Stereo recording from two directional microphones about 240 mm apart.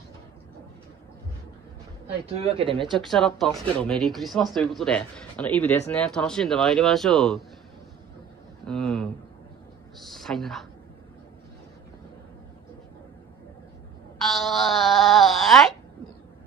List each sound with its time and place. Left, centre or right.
2.4 s speech: right
2.9 s speech: centre
8.6 s a woman's voice: centre
14.2 s speech: centre